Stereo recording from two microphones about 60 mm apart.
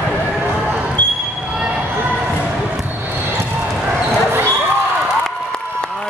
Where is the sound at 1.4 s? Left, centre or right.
Centre.